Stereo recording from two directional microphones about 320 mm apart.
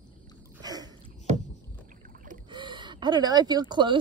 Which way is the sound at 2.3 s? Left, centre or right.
Centre.